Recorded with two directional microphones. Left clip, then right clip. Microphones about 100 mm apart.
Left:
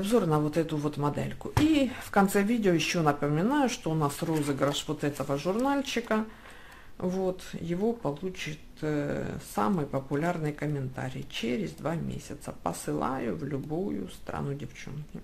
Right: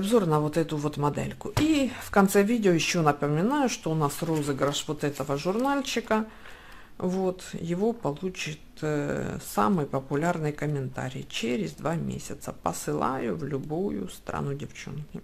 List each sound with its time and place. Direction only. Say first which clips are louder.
0.0 s speech: right 2 dB; 35° right (ahead or behind)